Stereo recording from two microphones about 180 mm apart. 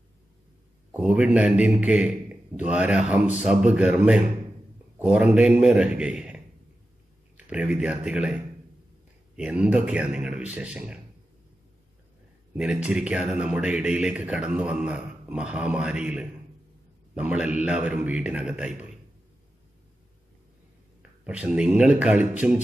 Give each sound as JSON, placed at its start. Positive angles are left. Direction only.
{"t": 0.9, "sound": "a man's voice", "side_deg": -5}
{"t": 9.4, "sound": "a man's voice", "side_deg": -5}
{"t": 12.5, "sound": "a man's voice", "side_deg": -5}
{"t": 21.2, "sound": "a man's voice", "side_deg": -5}